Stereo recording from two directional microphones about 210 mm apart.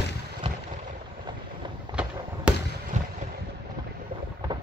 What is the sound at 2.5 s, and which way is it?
Fireworks, 5° right (ahead or behind).